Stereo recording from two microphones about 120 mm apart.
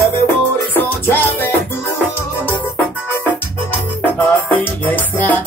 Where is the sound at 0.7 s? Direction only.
15° left (ahead or behind).